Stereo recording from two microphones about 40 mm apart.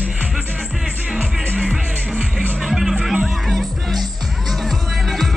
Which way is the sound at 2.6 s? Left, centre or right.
Centre.